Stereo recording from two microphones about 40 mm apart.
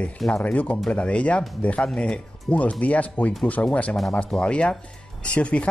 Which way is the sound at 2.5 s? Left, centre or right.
Left.